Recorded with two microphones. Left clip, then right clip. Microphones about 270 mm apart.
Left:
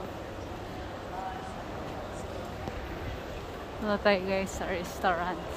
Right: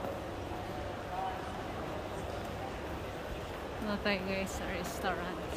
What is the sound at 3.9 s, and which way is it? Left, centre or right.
Speech, centre.